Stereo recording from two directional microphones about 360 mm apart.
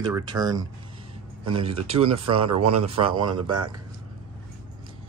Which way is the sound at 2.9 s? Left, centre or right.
Centre.